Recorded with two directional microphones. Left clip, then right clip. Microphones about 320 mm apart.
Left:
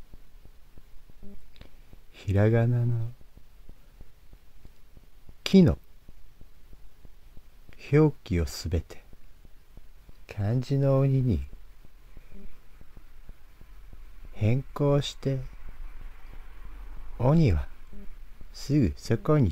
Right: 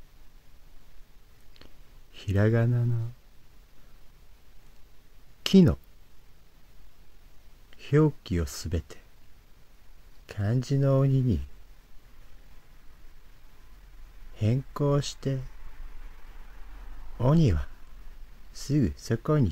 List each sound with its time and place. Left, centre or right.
2.2 s speech: centre
5.4 s a sound: centre
7.7 s speech: centre
10.2 s speech: centre
14.7 s speech: centre
17.2 s speech: centre
18.8 s speech: centre